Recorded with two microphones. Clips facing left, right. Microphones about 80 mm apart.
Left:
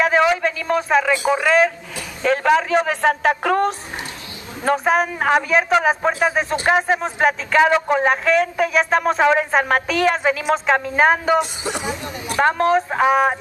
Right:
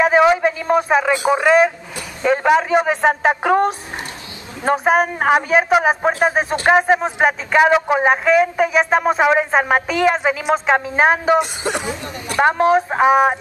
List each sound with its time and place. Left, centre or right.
0.0 s a sound: centre
0.7 s speech: centre
6.1 s speech: right
6.9 s speech: centre
11.8 s a woman's voice: centre
12.4 s speech: centre